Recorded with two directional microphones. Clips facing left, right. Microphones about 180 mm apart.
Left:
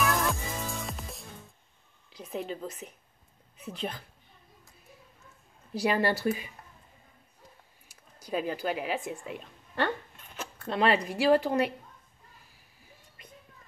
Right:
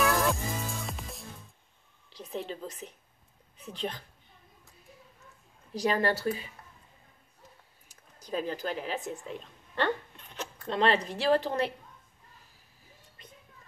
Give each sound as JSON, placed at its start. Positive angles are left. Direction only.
{"t": 0.0, "sound": "music", "side_deg": 0}
{"t": 2.0, "sound": "a woman's voice", "side_deg": 5}
{"t": 5.8, "sound": "speech", "side_deg": 10}
{"t": 7.9, "sound": "speech", "side_deg": 10}